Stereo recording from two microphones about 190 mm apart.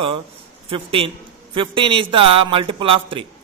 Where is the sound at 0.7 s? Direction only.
30° right (ahead or behind).